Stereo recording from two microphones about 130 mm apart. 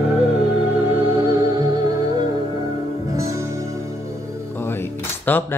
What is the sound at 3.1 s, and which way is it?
Music, 25° right (ahead or behind).